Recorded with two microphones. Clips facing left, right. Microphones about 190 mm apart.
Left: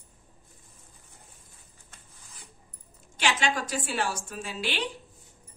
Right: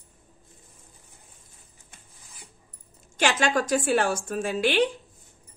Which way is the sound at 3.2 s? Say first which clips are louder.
Right 5 dB; 45° right (ahead or behind).